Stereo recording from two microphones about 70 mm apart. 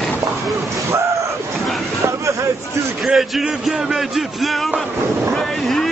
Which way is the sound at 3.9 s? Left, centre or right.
Centre.